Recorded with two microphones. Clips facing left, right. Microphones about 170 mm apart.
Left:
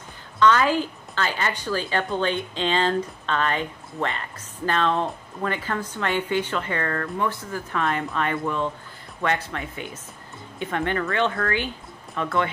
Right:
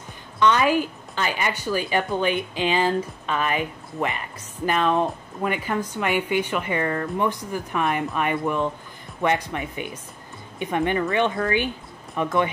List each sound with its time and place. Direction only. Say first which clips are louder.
0.4 s a woman's voice: even; 20° right (ahead or behind)